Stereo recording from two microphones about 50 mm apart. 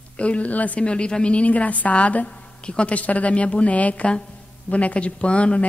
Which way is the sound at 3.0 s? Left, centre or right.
Left.